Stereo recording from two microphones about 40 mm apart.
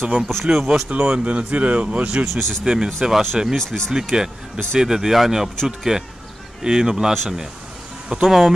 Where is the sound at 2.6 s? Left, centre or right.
Centre.